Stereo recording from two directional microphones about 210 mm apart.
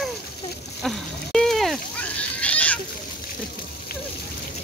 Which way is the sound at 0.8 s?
Centre (ahead or behind).